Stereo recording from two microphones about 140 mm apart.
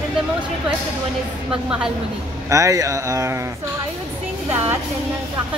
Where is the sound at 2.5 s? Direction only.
25° right (ahead or behind).